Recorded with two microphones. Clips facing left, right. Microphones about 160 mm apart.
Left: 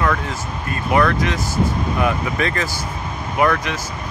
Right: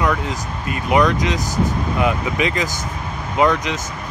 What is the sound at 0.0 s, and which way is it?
Speech, 15° right (ahead or behind).